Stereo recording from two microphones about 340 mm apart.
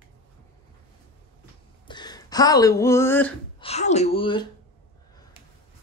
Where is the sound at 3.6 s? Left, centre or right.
Centre.